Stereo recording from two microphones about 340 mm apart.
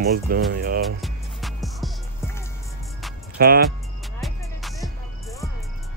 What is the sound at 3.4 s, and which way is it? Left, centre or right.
Speech, right.